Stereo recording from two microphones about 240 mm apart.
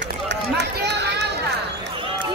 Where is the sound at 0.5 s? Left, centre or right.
Right.